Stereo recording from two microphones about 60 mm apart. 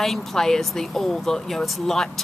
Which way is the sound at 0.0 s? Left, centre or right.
Centre.